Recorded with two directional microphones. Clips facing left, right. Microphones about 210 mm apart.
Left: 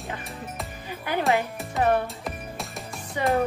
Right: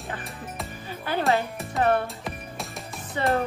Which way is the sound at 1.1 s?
15° left (ahead or behind).